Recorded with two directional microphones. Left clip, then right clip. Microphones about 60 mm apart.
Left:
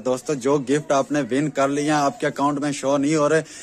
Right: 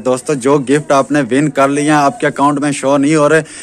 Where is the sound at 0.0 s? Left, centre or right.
Left.